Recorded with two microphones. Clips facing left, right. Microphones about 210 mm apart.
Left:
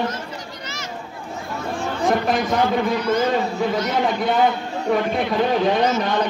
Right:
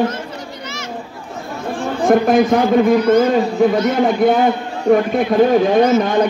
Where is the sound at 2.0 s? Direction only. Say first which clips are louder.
Right 8 dB; 50° right (ahead or behind).